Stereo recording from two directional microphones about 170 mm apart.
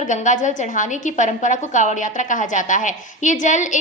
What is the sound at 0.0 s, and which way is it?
A woman's voice, 45° left (ahead or behind).